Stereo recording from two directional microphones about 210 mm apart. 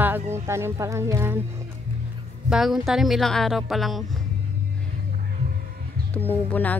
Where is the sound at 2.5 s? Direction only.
Centre (ahead or behind).